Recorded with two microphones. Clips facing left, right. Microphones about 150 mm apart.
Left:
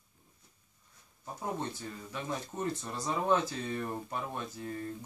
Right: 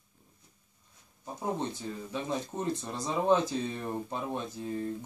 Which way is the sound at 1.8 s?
20° right (ahead or behind).